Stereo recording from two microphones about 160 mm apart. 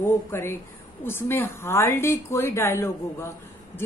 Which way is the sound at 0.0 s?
15° left (ahead or behind).